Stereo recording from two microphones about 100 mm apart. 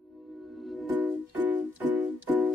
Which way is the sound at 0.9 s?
15° right (ahead or behind).